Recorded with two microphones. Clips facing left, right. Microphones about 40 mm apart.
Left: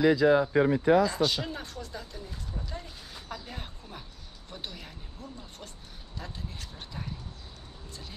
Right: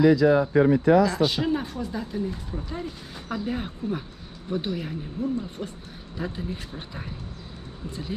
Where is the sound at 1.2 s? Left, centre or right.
Centre.